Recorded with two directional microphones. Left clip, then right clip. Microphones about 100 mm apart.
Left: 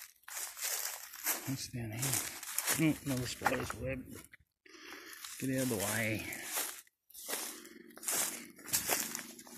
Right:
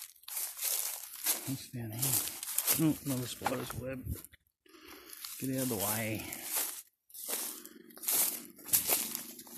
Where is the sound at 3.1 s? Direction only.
35° right (ahead or behind).